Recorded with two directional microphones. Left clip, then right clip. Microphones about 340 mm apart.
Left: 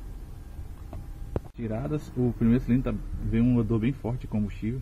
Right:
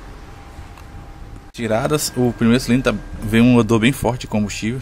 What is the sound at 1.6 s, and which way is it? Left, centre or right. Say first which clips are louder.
Speech: right 16 dB; centre.